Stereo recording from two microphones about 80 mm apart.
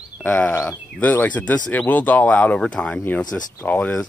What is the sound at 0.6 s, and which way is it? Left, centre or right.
Speech, centre.